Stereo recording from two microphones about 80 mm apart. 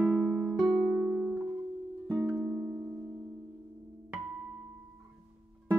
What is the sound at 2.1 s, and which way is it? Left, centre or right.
Music, right.